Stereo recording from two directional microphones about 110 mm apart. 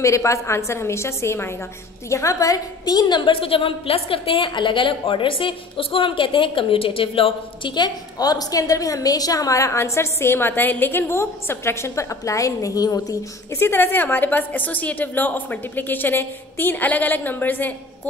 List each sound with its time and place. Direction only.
0.0 s a woman's voice: 25° left (ahead or behind); by 7.7 s 55° left (ahead or behind)
7.7 s a woman's voice: 40° left (ahead or behind)
13.6 s a woman's voice: 20° left (ahead or behind)